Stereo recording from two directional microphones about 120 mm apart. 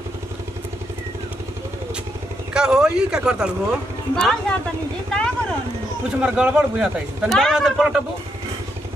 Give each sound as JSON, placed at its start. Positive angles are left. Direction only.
{"t": 2.5, "sound": "speech", "side_deg": -5}
{"t": 5.1, "sound": "vehicle", "side_deg": 5}
{"t": 6.0, "sound": "a man's voice", "side_deg": -10}
{"t": 7.3, "sound": "speech", "side_deg": 5}